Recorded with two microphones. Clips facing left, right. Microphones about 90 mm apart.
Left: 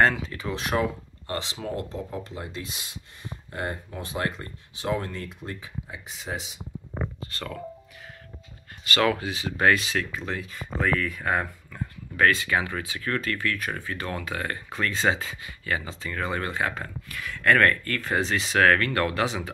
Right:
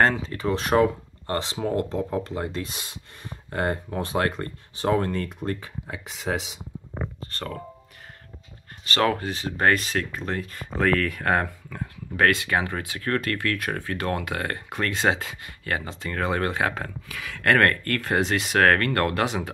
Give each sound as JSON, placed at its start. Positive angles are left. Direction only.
{"t": 0.0, "sound": "speech", "side_deg": -35}
{"t": 7.2, "sound": "speech", "side_deg": -40}
{"t": 8.8, "sound": "speech", "side_deg": -35}
{"t": 12.4, "sound": "speech", "side_deg": -50}